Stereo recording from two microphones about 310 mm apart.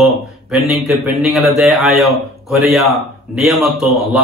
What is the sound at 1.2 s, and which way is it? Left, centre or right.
A man's voice, centre.